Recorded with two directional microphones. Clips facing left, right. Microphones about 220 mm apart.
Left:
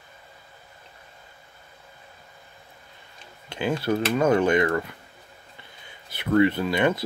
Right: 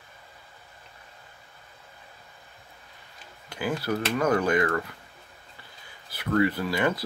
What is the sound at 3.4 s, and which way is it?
Speech, 25° left (ahead or behind).